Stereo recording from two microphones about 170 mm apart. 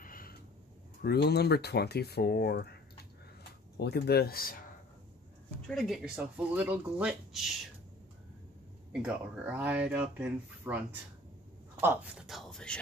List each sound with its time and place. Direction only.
0.0 s a sound: 55° left (ahead or behind)
1.0 s speech: 70° left (ahead or behind)
5.7 s speech: centre (ahead or behind)
9.0 s speech: 10° right (ahead or behind)
11.8 s speech: 15° right (ahead or behind)
12.3 s speech: centre (ahead or behind)